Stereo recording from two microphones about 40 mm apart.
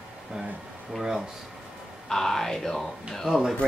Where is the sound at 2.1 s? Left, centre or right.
Centre.